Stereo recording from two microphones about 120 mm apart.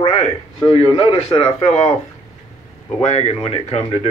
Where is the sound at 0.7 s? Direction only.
50° left (ahead or behind).